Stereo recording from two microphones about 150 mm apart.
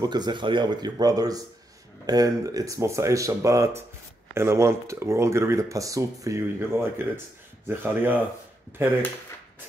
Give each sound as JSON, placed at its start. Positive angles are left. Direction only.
{"t": 0.0, "sound": "speech", "side_deg": -30}